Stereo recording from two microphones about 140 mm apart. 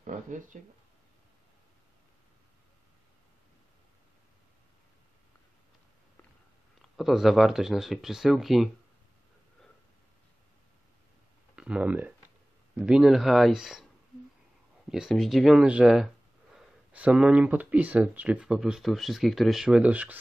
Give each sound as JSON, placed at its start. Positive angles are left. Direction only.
{"t": 0.0, "sound": "speech", "side_deg": -65}
{"t": 7.0, "sound": "speech", "side_deg": 0}
{"t": 11.5, "sound": "speech", "side_deg": -5}
{"t": 14.9, "sound": "speech", "side_deg": -5}